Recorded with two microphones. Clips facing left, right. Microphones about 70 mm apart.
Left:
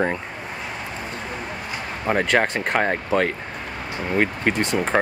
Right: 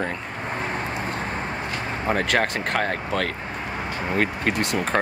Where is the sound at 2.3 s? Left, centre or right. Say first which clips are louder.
Left 2 dB; centre.